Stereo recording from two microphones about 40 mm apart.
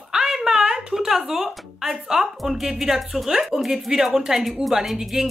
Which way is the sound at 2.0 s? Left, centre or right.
Centre.